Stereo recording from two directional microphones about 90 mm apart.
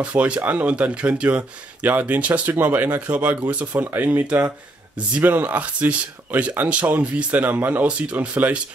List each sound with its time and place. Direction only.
0.0 s speech: 15° right (ahead or behind)